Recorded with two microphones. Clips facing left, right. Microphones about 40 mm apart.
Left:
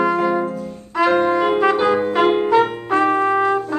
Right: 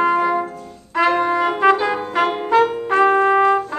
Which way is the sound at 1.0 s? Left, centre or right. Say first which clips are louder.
Left 2 dB; centre.